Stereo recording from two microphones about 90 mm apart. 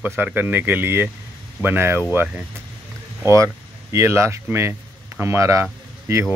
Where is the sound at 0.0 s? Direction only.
20° right (ahead or behind).